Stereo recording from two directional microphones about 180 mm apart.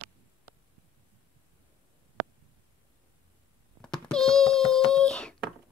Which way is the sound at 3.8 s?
5° left (ahead or behind).